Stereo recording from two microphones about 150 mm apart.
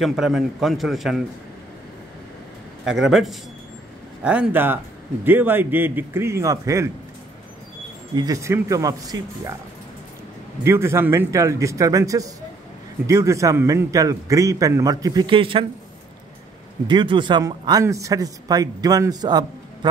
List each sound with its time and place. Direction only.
0.0 s a man's voice: centre (ahead or behind)
2.8 s a man's voice: 5° right (ahead or behind); by 6.9 s 20° right (ahead or behind)
8.1 s a man's voice: 25° right (ahead or behind)
10.6 s a man's voice: 15° right (ahead or behind); by 15.6 s 35° right (ahead or behind)
16.8 s a man's voice: 30° right (ahead or behind)